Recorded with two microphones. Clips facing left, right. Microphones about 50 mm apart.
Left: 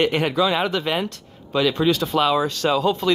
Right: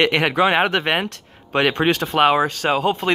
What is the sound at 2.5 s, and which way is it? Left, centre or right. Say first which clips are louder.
Speech: right 1 dB; right.